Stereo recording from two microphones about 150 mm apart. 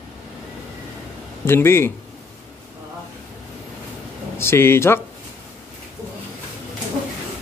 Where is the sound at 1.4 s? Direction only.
15° left (ahead or behind).